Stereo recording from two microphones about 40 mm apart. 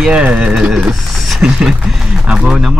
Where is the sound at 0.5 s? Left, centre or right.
Right.